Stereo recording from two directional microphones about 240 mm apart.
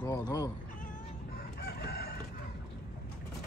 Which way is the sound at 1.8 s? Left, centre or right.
Left.